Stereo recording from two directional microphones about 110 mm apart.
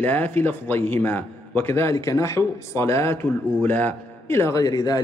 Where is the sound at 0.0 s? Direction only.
15° left (ahead or behind).